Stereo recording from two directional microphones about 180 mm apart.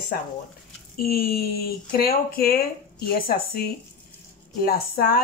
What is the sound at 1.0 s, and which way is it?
Speech, 55° left (ahead or behind).